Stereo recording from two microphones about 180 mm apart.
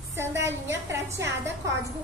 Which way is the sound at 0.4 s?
15° right (ahead or behind).